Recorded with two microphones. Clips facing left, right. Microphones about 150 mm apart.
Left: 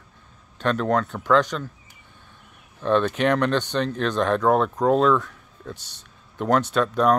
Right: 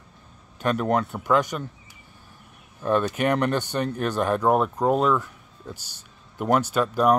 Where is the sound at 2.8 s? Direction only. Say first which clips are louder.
Left 2 dB; 10° right (ahead or behind).